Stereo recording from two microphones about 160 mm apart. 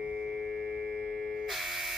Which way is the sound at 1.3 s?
Centre (ahead or behind).